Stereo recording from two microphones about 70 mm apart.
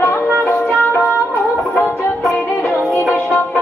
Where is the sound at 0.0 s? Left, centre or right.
Left.